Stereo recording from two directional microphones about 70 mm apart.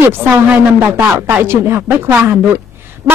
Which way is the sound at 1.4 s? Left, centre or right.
Right.